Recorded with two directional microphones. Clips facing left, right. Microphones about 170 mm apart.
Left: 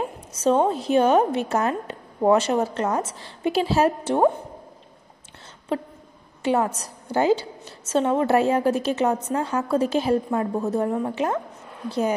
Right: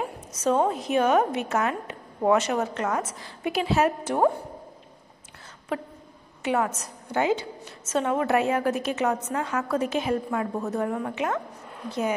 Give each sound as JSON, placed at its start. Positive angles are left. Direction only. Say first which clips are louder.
{"t": 0.3, "sound": "a woman's voice", "louder": "left 3 dB", "side_deg": 30}
{"t": 5.7, "sound": "a woman's voice", "louder": "left 4 dB", "side_deg": 30}